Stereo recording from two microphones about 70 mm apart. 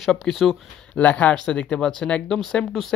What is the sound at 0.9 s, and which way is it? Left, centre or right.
Speech, centre.